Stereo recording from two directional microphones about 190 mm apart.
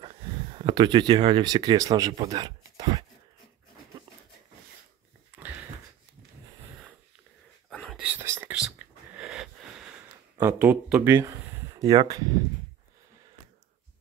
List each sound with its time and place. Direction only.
0.0 s speech: 25° right (ahead or behind)
7.7 s whispering: 5° left (ahead or behind)
8.0 s whispering: 10° right (ahead or behind)
10.3 s speech: 15° right (ahead or behind)